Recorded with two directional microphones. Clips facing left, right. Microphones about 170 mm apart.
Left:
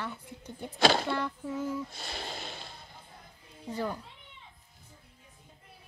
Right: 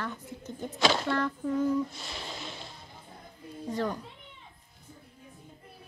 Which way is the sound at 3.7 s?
10° left (ahead or behind).